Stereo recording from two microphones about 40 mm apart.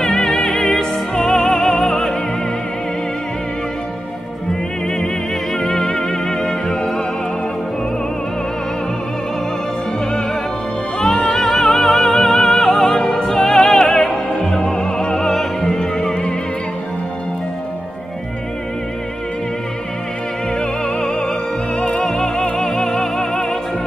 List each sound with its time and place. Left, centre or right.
0.1 s music: centre
4.8 s music: centre
11.2 s music: centre
12.9 s opera: centre
13.8 s music: left
14.5 s opera: left
15.2 s music: centre
20.5 s music: centre
22.3 s music: centre